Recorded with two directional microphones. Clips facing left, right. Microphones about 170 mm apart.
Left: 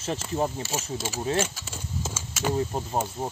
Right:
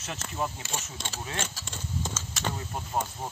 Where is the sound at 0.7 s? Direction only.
5° left (ahead or behind).